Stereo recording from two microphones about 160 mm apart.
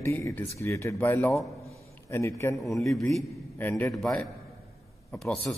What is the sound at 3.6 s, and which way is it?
Speech, 10° left (ahead or behind).